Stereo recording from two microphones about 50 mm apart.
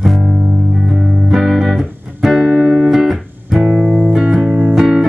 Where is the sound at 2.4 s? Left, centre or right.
Centre.